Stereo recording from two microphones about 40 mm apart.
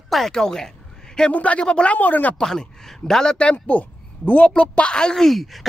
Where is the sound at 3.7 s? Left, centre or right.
Left.